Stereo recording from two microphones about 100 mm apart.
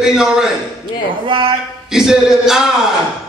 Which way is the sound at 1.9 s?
5° right (ahead or behind).